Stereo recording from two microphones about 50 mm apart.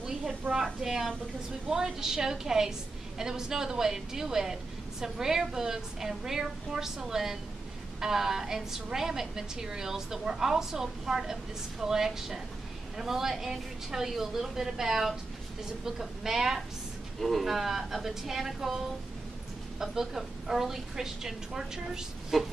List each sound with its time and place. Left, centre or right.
0.5 s a woman's voice: right
0.8 s a woman's voice: centre
19.8 s a woman's voice: centre